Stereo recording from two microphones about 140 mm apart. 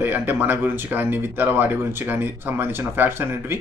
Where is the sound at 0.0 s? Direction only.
15° right (ahead or behind).